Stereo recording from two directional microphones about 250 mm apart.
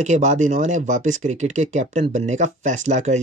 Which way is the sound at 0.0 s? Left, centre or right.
Right.